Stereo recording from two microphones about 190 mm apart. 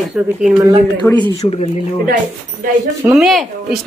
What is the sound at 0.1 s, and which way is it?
Speech, 5° right (ahead or behind).